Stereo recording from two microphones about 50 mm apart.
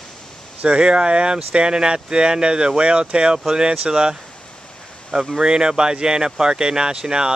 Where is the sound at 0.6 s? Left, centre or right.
Right; by 5.4 s centre.